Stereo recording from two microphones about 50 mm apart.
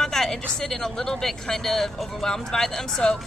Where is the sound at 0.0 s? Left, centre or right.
Centre.